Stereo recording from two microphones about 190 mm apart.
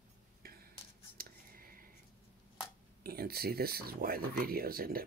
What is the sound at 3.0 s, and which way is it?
Speech, 55° right (ahead or behind).